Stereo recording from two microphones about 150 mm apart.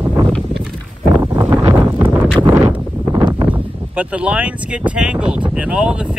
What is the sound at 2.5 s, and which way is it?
Wind noise, 20° right (ahead or behind).